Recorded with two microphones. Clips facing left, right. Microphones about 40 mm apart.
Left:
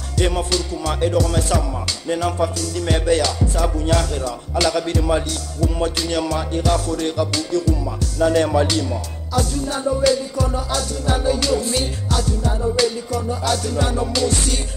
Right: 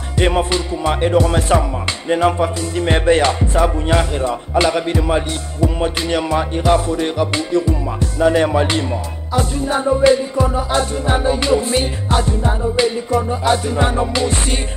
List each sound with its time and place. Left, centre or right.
0.2 s music: right